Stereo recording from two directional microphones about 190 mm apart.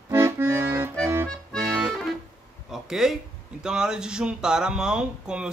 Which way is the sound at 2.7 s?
Centre (ahead or behind).